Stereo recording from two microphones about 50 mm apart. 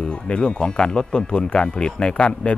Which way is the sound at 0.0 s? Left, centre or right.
Centre.